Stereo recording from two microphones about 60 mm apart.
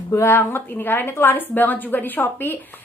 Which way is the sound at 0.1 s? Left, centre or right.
Left.